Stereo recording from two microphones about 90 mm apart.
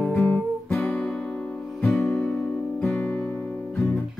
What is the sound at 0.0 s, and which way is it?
Guitar, 15° left (ahead or behind).